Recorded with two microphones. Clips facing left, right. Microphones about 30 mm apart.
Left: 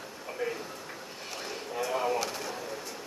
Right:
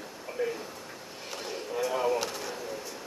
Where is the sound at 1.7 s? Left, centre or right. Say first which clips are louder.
Right 2 dB; centre.